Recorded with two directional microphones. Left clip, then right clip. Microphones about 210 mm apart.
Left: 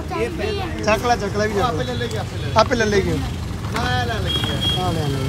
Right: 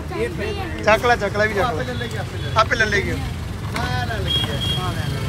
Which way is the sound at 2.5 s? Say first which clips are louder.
Left 1 dB; 25° left (ahead or behind).